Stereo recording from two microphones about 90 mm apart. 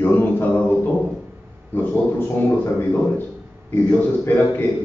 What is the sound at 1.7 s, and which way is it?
A man's voice, 20° left (ahead or behind).